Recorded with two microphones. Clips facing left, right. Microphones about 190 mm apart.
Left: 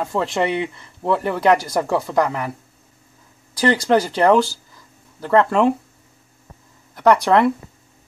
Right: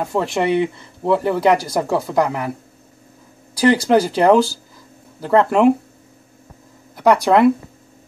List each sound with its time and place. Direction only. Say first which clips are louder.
0.0 s speech: right 2 dB; 10° right (ahead or behind)
3.5 s speech: right 3 dB; 5° right (ahead or behind)
7.0 s speech: right 2 dB; 5° right (ahead or behind)